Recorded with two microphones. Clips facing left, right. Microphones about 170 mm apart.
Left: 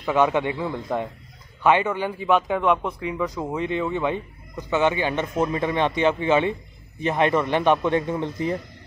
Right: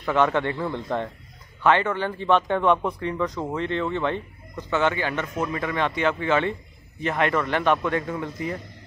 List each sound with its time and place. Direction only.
0.0 s a man's voice: 15° left (ahead or behind)